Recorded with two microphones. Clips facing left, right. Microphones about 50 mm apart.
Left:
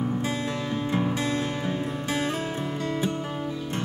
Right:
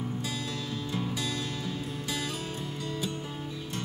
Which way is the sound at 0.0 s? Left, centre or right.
Left.